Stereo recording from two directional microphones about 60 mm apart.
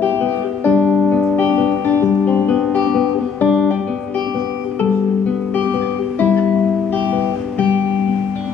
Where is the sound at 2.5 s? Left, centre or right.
Centre.